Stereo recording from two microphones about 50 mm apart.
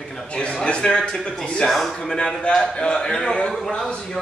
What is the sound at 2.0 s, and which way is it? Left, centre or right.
A man's voice, centre.